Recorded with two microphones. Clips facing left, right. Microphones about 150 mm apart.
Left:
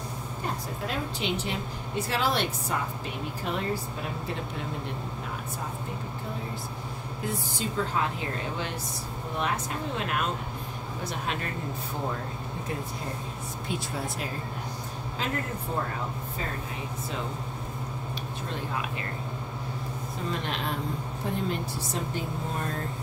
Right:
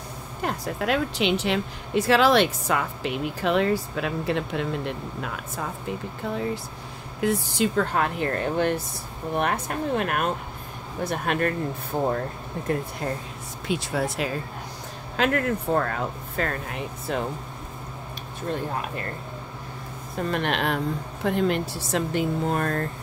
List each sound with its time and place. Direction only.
0.4 s a woman's voice: 75° right (ahead or behind); by 5.4 s 90° right
7.2 s speech: 80° right; by 11.5 s 60° right (ahead or behind)
13.7 s speech: 85° right
15.1 s a woman's voice: 70° right (ahead or behind)
20.2 s a woman's voice: 65° right (ahead or behind)